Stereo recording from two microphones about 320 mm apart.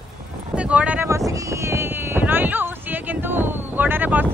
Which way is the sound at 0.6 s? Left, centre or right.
Centre.